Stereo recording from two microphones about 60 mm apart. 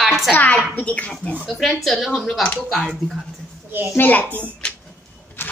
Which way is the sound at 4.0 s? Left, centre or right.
Left.